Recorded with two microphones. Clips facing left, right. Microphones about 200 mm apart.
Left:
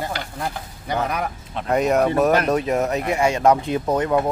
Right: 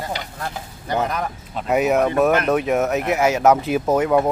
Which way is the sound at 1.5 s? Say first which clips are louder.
Right 1 dB; 5° right (ahead or behind).